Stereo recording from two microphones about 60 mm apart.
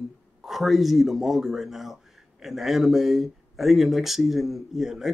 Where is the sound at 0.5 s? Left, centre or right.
Centre.